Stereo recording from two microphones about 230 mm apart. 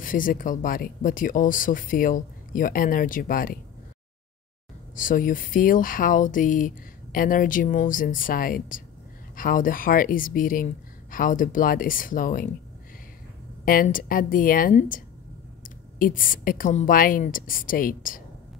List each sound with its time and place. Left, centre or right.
0.0 s speech: left
4.9 s speech: left
13.7 s speech: left